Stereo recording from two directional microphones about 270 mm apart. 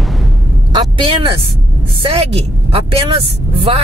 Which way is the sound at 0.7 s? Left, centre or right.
Centre.